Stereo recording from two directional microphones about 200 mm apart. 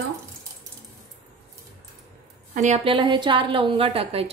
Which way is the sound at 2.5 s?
35° right (ahead or behind).